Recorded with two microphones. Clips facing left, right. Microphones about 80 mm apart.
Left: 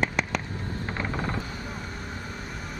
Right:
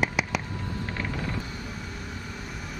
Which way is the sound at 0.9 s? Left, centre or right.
Left.